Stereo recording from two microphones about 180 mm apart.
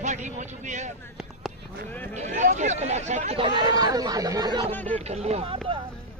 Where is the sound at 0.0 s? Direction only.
40° right (ahead or behind).